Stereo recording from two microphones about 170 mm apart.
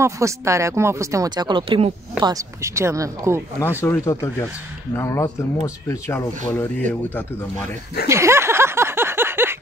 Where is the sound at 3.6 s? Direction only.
15° left (ahead or behind).